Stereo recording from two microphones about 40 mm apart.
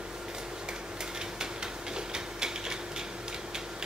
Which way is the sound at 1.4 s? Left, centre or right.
Centre.